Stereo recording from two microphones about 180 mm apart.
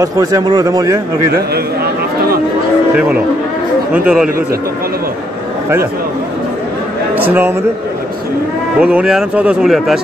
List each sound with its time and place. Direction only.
0.0 s a man's voice: 20° right (ahead or behind)
3.9 s speech: 5° right (ahead or behind)
7.2 s a man's voice: 10° right (ahead or behind)
8.7 s speech: 5° right (ahead or behind)